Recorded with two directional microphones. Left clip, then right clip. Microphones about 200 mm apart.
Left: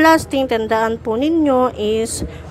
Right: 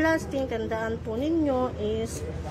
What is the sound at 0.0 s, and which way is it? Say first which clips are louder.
A woman's voice: left 12 dB; 30° left (ahead or behind).